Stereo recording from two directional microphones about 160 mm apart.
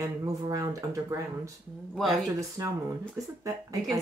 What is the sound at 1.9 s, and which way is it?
Speech, centre (ahead or behind).